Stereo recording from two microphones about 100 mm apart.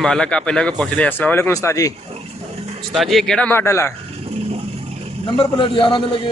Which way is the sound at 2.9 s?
Centre (ahead or behind).